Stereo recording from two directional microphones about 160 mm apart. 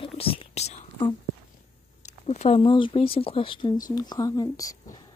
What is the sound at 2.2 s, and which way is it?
Speech, 40° left (ahead or behind).